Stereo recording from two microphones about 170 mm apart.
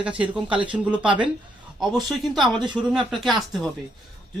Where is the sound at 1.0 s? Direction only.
30° right (ahead or behind).